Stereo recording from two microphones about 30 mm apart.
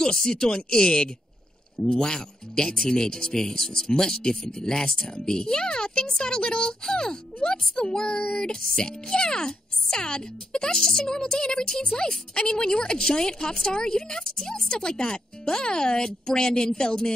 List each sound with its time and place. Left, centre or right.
0.0 s speech: left